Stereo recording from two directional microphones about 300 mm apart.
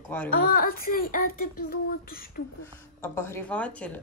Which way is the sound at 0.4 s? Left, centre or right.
Left.